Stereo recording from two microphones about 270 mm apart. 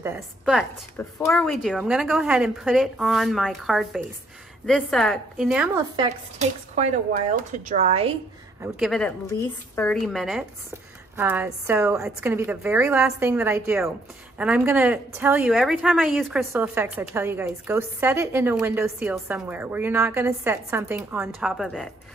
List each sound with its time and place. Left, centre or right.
0.0 s a woman's voice: centre
5.9 s speech: right
8.5 s a woman's voice: centre